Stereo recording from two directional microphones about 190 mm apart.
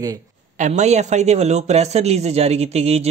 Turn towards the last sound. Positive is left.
turn(degrees=-35)  # may be behind; listen again after turning